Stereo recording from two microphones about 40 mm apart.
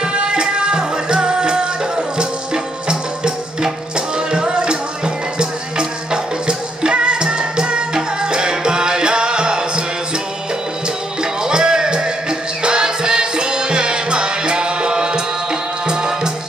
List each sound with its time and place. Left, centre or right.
0.0 s music: right
11.4 s music: centre